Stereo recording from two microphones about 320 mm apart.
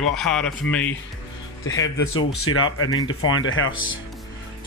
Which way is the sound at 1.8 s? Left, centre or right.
Left.